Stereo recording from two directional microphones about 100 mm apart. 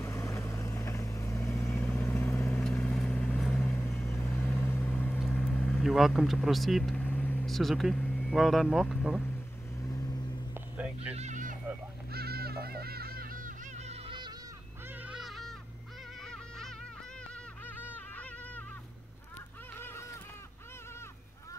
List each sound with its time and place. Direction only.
0.0 s vehicle: 30° left (ahead or behind)
2.5 s vehicle: 5° left (ahead or behind)
3.5 s vehicle: 25° left (ahead or behind)
5.3 s a sound: 15° left (ahead or behind)
5.7 s speech: 5° right (ahead or behind)
7.0 s vehicle: 20° left (ahead or behind)
7.4 s speech: centre (ahead or behind)
8.0 s vehicle: 15° left (ahead or behind)
8.3 s speech: centre (ahead or behind)
10.5 s a sound: 15° right (ahead or behind)
15.0 s a sound: 5° right (ahead or behind)
17.6 s a sound: 20° left (ahead or behind)